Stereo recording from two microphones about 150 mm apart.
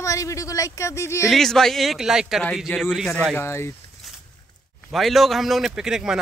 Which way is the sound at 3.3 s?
15° left (ahead or behind).